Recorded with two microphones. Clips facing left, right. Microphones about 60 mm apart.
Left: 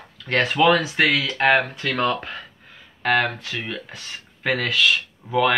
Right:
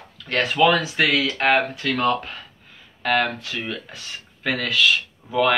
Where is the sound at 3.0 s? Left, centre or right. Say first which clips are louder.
Left 1 dB; centre.